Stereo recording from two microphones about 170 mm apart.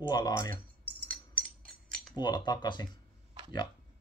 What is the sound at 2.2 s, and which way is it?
Speech, 25° left (ahead or behind).